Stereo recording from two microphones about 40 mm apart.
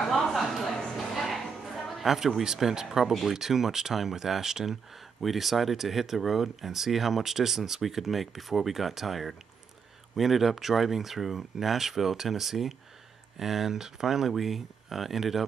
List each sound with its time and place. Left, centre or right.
0.1 s a sound: centre
0.9 s music: centre
2.0 s speech: centre